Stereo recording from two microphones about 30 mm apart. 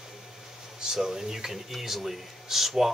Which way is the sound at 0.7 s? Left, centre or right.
Centre.